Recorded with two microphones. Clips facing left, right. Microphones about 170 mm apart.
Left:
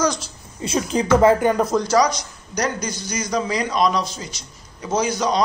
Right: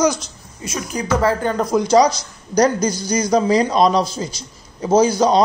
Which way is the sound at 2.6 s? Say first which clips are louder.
Right 8 dB; 35° right (ahead or behind).